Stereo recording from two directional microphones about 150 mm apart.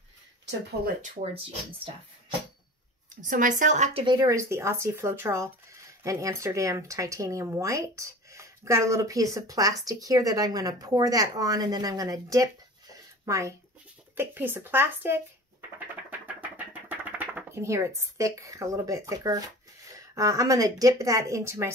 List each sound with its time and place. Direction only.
1.0 s speech: 45° right (ahead or behind)
3.2 s speech: 60° right (ahead or behind)
4.0 s speech: 30° right (ahead or behind)
4.4 s speech: 20° right (ahead or behind)
12.9 s a sound: 20° right (ahead or behind)
14.1 s speech: 15° right (ahead or behind)
16.1 s a sound: 10° right (ahead or behind)
17.2 s speech: 15° right (ahead or behind)